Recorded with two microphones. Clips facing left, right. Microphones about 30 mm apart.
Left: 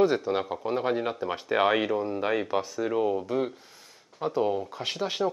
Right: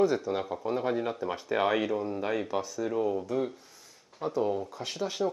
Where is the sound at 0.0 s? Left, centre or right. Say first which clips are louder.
Left 3 dB; left.